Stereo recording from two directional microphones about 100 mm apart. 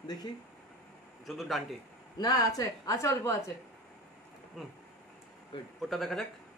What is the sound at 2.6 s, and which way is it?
Speech, 35° left (ahead or behind).